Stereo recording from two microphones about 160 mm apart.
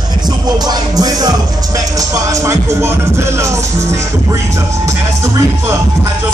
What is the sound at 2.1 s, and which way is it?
Music, 15° right (ahead or behind).